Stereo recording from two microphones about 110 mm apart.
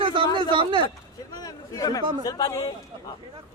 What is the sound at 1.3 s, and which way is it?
Speech, 35° left (ahead or behind).